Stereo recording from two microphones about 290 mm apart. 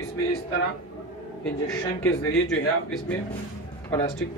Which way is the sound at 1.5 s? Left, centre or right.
Centre.